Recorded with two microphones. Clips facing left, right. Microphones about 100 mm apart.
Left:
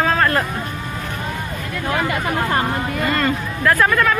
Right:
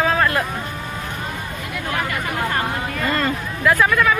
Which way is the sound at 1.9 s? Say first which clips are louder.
Left 4 dB; 25° left (ahead or behind).